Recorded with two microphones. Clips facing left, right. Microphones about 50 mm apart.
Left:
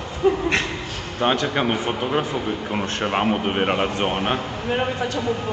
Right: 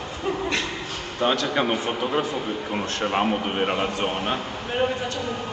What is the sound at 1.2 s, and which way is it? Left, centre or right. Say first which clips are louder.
Speech: left 2 dB; left.